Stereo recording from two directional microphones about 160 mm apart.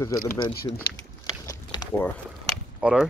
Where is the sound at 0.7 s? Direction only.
25° left (ahead or behind).